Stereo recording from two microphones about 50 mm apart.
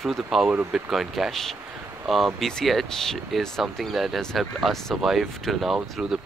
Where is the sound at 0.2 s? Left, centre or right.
Centre.